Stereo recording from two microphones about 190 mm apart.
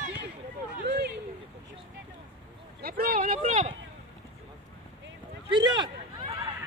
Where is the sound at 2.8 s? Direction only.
50° right (ahead or behind).